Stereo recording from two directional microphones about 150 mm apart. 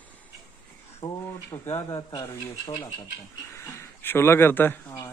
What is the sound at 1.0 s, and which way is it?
Speech, 25° left (ahead or behind).